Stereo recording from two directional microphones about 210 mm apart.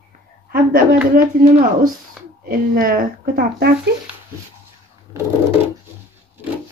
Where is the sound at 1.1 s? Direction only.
40° right (ahead or behind).